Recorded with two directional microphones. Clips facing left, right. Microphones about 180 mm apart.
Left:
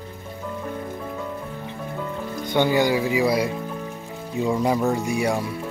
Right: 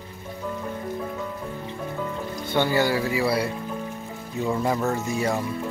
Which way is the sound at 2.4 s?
15° left (ahead or behind).